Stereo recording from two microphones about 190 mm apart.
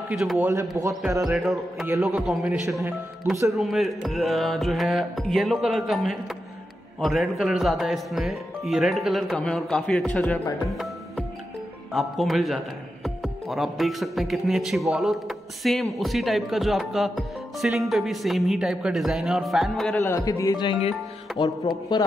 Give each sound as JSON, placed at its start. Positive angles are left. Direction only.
{"t": 0.1, "sound": "a man's voice", "side_deg": -5}
{"t": 0.5, "sound": "a man's voice", "side_deg": -15}
{"t": 1.2, "sound": "a man's voice", "side_deg": 0}
{"t": 3.5, "sound": "a man's voice", "side_deg": 0}
{"t": 10.7, "sound": "music", "side_deg": 0}
{"t": 11.9, "sound": "a man's voice", "side_deg": 0}
{"t": 20.0, "sound": "speech", "side_deg": 15}